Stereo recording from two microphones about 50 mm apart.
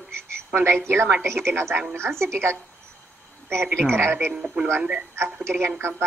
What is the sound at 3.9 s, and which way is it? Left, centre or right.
A woman's voice, right.